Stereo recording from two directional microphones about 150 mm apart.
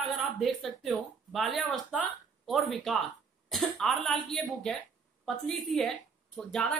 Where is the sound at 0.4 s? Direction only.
Centre (ahead or behind).